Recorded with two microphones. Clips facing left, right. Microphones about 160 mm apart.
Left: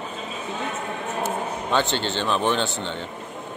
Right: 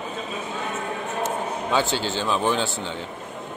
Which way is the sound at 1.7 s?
5° right (ahead or behind).